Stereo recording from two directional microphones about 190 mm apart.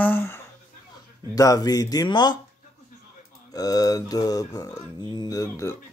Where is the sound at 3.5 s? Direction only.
20° left (ahead or behind).